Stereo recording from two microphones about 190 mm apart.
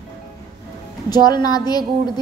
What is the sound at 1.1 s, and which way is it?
Speech, 20° left (ahead or behind).